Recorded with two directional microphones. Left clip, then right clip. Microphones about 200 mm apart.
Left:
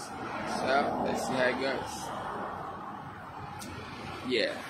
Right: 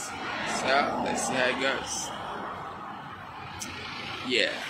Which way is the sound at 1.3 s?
Centre (ahead or behind).